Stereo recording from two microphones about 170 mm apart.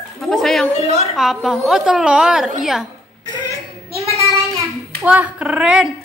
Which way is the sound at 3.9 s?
35° right (ahead or behind).